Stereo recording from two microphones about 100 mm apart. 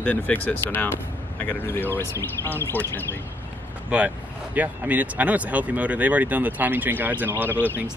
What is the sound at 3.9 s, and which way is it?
Speech, 15° right (ahead or behind).